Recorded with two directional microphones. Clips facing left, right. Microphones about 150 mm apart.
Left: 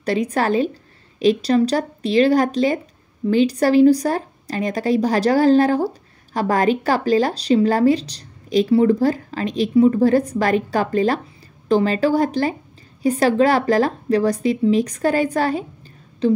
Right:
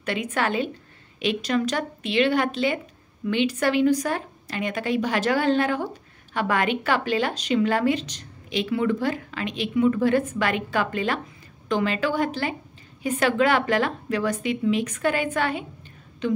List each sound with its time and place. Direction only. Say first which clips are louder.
0.0 s a woman's voice: left 6 dB; 35° left (ahead or behind)